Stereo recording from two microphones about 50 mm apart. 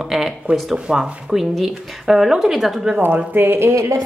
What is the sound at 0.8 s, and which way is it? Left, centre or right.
A woman's voice, centre.